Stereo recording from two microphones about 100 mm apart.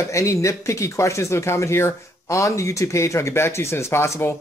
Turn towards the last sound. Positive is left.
turn(degrees=25)  # may be behind; listen again after turning